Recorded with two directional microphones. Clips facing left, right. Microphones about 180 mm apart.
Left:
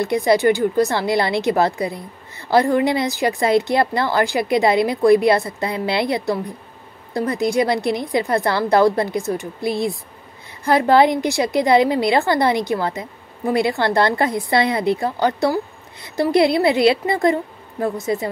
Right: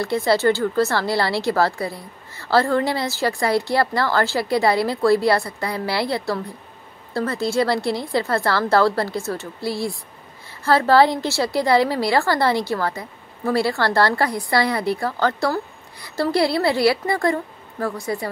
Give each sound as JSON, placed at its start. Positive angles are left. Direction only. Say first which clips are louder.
{"t": 0.0, "sound": "a woman's voice", "louder": "left 3 dB", "side_deg": 15}